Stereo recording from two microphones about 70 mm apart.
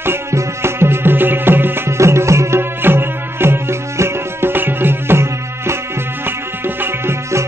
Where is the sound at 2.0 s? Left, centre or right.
Right.